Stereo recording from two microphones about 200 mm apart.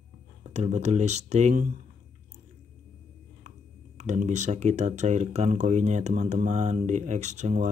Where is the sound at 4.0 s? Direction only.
35° right (ahead or behind).